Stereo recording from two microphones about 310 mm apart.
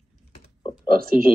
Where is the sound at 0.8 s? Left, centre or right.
Right.